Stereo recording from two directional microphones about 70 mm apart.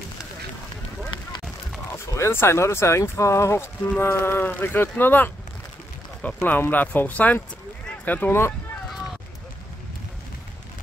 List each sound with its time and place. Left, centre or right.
2.1 s speech: left
8.3 s speech: left